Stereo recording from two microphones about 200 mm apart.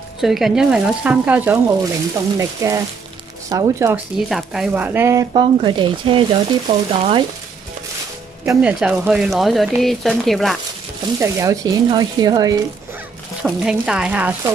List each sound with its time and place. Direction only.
0.2 s speech: centre (ahead or behind)
4.3 s speech: centre (ahead or behind)
5.3 s speech: 25° right (ahead or behind)
8.5 s speech: 5° right (ahead or behind)
11.1 s speech: 15° right (ahead or behind)
13.4 s speech: 5° right (ahead or behind)